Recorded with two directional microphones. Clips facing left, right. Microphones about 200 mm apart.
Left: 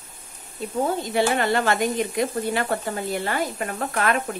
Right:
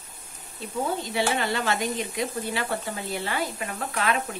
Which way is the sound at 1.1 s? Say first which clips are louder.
Left 6 dB; 50° left (ahead or behind).